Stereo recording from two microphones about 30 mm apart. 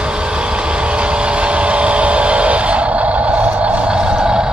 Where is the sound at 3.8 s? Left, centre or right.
Right.